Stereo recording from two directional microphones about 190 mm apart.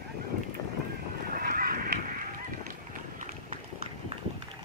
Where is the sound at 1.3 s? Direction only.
50° right (ahead or behind).